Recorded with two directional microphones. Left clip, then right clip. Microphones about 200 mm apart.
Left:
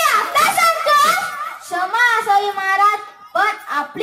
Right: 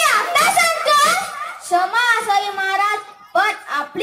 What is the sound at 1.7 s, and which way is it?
Child singing, 55° right (ahead or behind).